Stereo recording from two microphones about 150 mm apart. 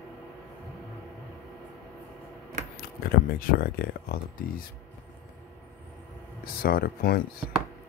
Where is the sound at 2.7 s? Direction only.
80° left.